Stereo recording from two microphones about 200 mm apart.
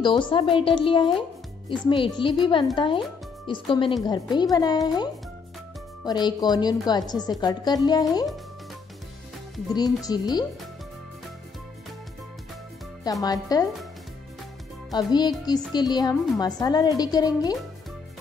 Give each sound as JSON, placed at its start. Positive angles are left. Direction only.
{"t": 0.0, "sound": "speech", "side_deg": 25}
{"t": 10.0, "sound": "speech", "side_deg": 20}
{"t": 13.0, "sound": "speech", "side_deg": 20}
{"t": 14.9, "sound": "speech", "side_deg": 20}